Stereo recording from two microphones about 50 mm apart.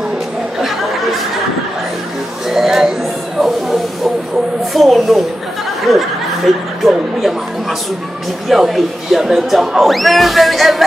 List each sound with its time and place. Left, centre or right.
0.6 s chatter: centre
2.5 s a sound: centre
6.8 s speech: centre
8.5 s speech: centre